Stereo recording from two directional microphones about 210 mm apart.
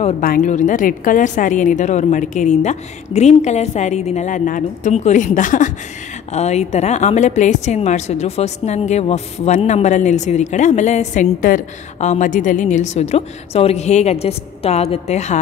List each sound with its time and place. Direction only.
0.2 s a woman's voice: 40° left (ahead or behind)